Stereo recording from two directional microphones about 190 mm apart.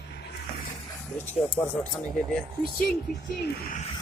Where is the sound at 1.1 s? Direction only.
10° left (ahead or behind).